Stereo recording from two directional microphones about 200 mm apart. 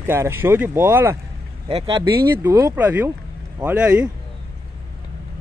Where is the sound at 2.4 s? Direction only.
15° right (ahead or behind).